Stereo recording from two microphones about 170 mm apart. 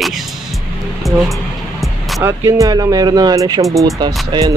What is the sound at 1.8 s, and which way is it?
Music, centre (ahead or behind).